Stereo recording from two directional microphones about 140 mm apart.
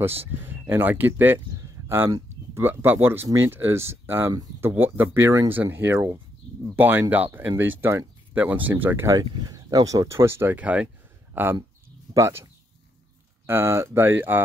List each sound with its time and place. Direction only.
0.4 s speech: 15° right (ahead or behind)
13.5 s speech: 20° right (ahead or behind)